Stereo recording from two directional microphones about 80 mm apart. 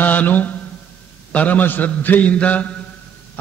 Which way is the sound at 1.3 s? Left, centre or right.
Centre.